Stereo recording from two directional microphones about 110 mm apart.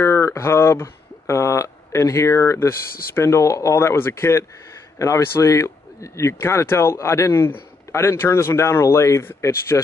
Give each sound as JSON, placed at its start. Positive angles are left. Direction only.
{"t": 0.0, "sound": "a man's voice", "side_deg": 25}